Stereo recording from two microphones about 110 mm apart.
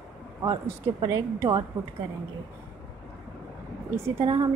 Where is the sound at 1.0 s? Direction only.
30° right (ahead or behind).